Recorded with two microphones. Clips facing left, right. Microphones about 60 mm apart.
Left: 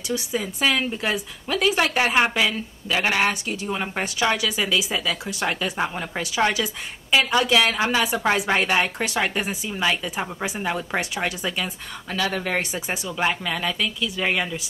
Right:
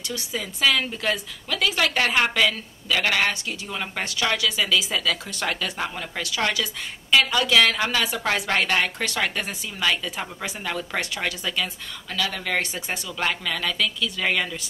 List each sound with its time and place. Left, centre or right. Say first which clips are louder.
0.1 s speech: left 5 dB; left
12.5 s speech: left 1 dB; centre